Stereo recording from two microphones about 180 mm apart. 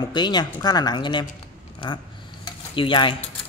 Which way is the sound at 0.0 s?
25° left (ahead or behind).